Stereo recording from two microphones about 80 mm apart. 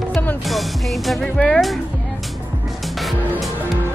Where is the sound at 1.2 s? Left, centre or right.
Centre.